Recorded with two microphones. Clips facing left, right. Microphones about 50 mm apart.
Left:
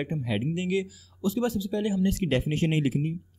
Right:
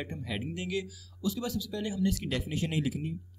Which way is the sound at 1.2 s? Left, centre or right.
Left.